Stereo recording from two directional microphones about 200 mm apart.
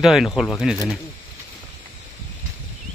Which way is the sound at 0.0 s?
Centre (ahead or behind).